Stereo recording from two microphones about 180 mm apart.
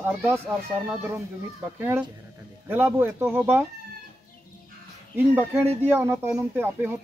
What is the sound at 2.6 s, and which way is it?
Speech, 10° right (ahead or behind).